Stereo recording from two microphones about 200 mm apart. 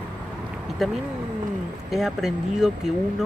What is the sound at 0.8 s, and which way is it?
Speech, centre (ahead or behind).